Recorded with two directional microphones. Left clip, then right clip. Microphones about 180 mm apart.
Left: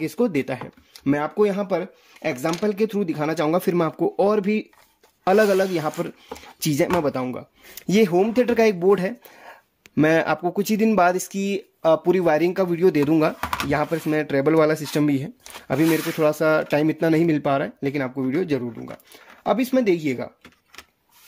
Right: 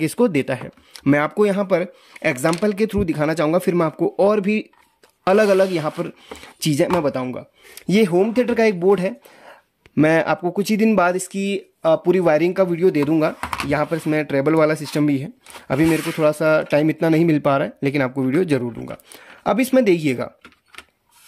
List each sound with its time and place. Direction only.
0.0 s speech: 35° right (ahead or behind)